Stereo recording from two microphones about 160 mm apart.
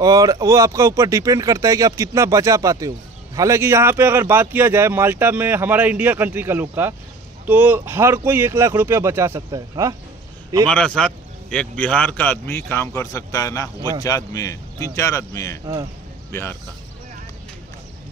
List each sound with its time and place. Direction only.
0.0 s speech: 20° right (ahead or behind)
10.7 s a man's voice: 5° left (ahead or behind)
15.6 s speech: 25° right (ahead or behind)
16.3 s speech: 15° left (ahead or behind)